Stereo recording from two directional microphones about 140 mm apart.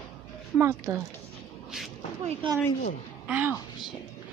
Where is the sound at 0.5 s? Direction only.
15° right (ahead or behind).